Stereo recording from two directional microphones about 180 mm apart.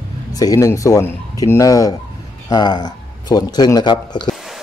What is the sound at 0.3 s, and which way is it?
Speech, 20° left (ahead or behind).